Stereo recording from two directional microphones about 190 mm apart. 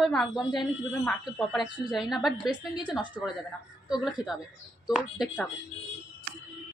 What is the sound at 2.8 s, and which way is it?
Speech, 25° left (ahead or behind).